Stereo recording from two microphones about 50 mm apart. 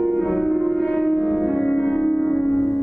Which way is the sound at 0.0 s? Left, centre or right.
Centre.